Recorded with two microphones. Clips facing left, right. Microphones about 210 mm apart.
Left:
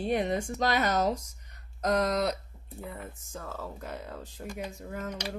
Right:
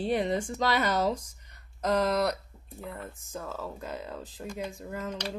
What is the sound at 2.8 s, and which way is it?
Speech, 10° left (ahead or behind).